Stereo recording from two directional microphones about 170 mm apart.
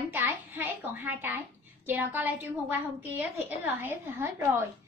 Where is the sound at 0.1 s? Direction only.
10° right (ahead or behind).